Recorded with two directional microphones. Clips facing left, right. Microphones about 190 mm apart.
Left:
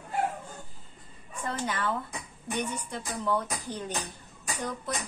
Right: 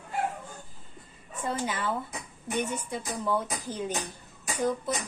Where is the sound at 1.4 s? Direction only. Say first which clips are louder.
Right 1 dB; 10° right (ahead or behind).